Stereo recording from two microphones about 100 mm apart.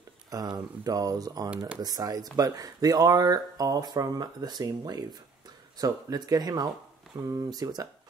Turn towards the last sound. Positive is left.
turn(degrees=-40)  # may be behind; listen again after turning